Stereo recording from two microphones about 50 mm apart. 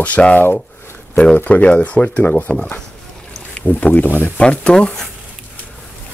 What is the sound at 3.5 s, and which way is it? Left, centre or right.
Speech, left.